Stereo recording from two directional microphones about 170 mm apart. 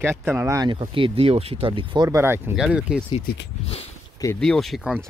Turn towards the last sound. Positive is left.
turn(degrees=0)  # may be behind; listen again after turning